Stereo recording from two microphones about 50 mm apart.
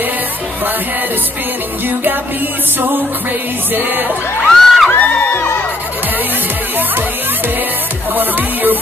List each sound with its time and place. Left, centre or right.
3.7 s music: right
4.5 s music: centre
4.9 s music: left
8.1 s music: right